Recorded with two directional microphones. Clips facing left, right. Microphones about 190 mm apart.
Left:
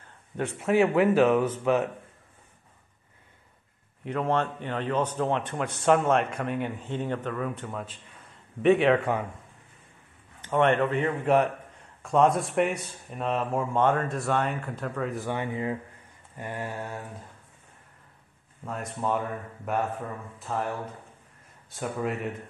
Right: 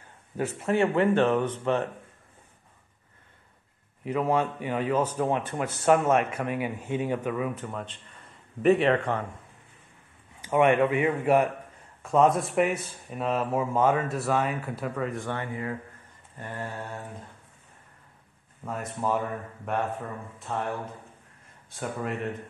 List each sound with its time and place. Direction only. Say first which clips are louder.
0.4 s speech: left 2 dB; centre (ahead or behind)
4.0 s speech: right 1 dB; 5° right (ahead or behind)
10.4 s speech: right 2 dB; 10° right (ahead or behind)
15.3 s speech: left 3 dB; 20° left (ahead or behind)
16.3 s mantra: left 2 dB; 10° left (ahead or behind)
18.7 s speech: right 1 dB; centre (ahead or behind)